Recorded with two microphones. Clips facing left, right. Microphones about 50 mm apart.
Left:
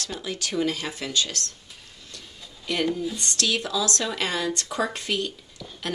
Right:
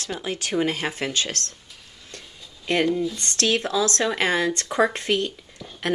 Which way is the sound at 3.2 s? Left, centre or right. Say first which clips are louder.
Right 3 dB; right.